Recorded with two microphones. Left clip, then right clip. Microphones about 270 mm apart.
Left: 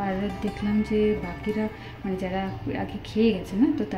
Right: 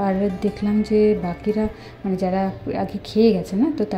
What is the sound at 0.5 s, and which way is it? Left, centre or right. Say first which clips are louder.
Music: right 6 dB; centre.